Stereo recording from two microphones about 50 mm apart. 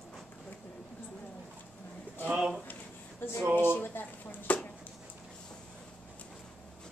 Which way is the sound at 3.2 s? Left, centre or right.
Left.